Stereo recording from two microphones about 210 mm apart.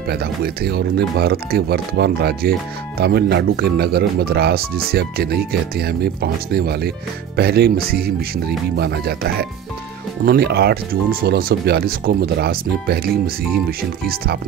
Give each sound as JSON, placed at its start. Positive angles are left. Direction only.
{"t": 0.1, "sound": "speech", "side_deg": -50}